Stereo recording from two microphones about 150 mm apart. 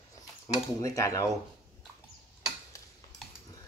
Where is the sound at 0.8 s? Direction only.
20° left (ahead or behind).